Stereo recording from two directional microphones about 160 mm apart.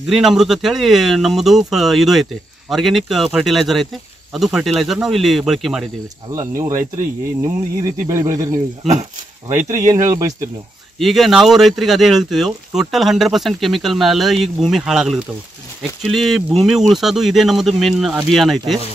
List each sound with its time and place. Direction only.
0.1 s speech: centre (ahead or behind)
6.3 s speech: 20° right (ahead or behind)
11.0 s speech: centre (ahead or behind)